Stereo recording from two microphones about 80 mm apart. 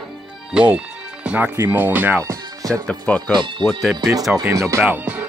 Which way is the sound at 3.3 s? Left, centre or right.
Right.